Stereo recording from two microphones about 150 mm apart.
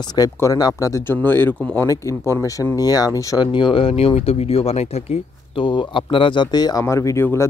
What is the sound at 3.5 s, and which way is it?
Speech, 35° left (ahead or behind).